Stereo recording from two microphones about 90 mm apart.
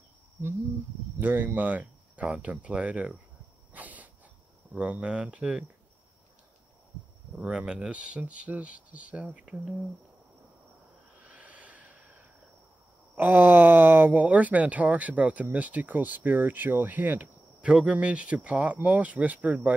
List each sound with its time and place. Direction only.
1.2 s speech: 20° right (ahead or behind)
3.7 s a sound: 15° right (ahead or behind)
4.7 s speech: 15° right (ahead or behind)
7.3 s speech: 10° right (ahead or behind)
11.1 s snort: 15° right (ahead or behind)
13.1 s speech: 20° right (ahead or behind)